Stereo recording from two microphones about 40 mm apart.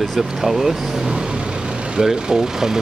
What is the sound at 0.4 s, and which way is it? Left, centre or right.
Speech, centre.